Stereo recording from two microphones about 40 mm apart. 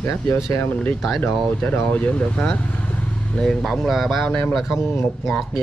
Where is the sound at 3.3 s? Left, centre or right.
Centre.